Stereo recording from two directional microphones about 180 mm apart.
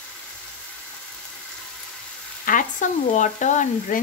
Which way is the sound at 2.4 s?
45° left (ahead or behind).